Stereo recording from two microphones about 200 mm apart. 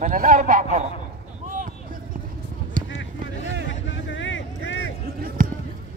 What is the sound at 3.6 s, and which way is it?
Vehicle, 65° left (ahead or behind).